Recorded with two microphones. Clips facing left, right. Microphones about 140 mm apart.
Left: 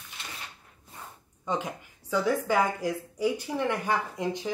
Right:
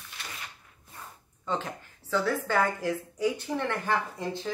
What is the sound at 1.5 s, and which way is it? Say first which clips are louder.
A woman's voice: left 1 dB; 15° left (ahead or behind).